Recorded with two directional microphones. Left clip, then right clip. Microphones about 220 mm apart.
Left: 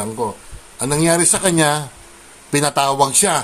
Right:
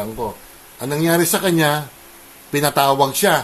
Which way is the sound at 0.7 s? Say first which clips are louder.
Left 1 dB; 15° left (ahead or behind).